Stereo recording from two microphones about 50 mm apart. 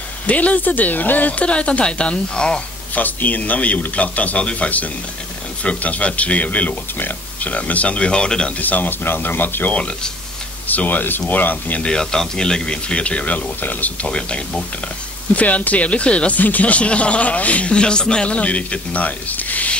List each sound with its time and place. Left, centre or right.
0.3 s speech: left
2.9 s speech: left; by 8.5 s centre
8.5 s speech: left
9.8 s speech: left
10.7 s speech: left
11.8 s speech: centre; by 13.9 s left
14.0 s speech: centre
15.3 s speech: left
16.3 s speech: left